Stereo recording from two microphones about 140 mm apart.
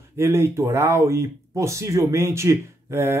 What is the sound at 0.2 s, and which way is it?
Speech, 20° right (ahead or behind).